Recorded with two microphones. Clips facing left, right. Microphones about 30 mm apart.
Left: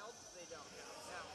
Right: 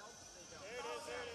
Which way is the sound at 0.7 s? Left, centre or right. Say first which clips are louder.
Right 9 dB; right.